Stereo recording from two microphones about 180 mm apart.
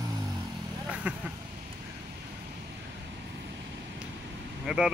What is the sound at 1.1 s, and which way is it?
Speech, 5° right (ahead or behind).